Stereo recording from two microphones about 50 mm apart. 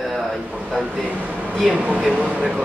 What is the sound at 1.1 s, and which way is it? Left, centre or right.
Speech, right.